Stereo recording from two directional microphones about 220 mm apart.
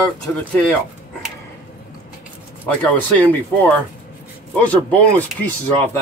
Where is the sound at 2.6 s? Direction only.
10° left (ahead or behind).